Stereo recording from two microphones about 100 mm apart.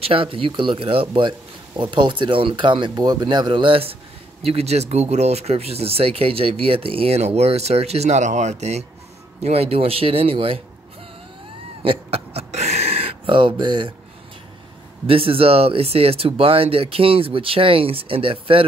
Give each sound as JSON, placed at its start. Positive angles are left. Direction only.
{"t": 0.0, "sound": "speech", "side_deg": -70}
{"t": 4.5, "sound": "speech", "side_deg": -90}
{"t": 9.4, "sound": "speech", "side_deg": -90}
{"t": 11.8, "sound": "a sound", "side_deg": -70}
{"t": 13.3, "sound": "speech", "side_deg": -55}
{"t": 15.0, "sound": "speech", "side_deg": -65}